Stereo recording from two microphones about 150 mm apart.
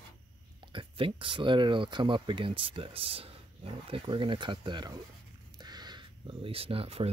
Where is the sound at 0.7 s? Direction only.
35° right (ahead or behind).